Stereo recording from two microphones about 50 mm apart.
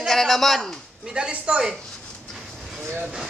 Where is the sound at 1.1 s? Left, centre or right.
Centre.